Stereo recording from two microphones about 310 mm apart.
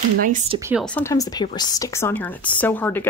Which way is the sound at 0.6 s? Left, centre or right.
Centre.